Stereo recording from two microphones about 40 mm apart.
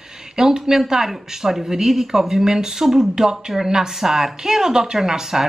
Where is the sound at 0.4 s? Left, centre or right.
Centre.